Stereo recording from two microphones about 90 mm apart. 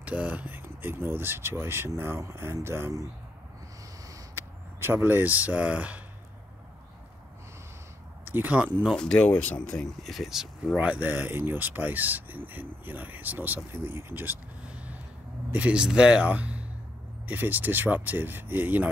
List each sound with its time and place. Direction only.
0.0 s speech: 15° right (ahead or behind); by 3.1 s 30° right (ahead or behind)
4.1 s a sound: 25° right (ahead or behind)
8.3 s speech: 20° right (ahead or behind)
8.9 s speech: 10° left (ahead or behind)
10.0 s speech: centre (ahead or behind); by 18.9 s 20° right (ahead or behind)